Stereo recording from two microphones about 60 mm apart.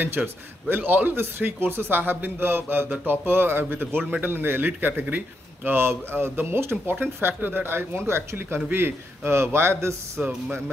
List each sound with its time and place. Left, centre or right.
0.0 s a man's voice: right
8.5 s a man's voice: right